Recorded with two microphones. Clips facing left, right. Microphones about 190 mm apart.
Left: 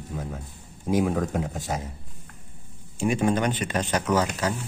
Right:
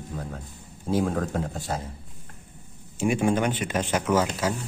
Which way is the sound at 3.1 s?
10° right (ahead or behind).